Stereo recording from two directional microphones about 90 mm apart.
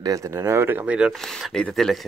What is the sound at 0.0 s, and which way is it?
Speech, 40° right (ahead or behind).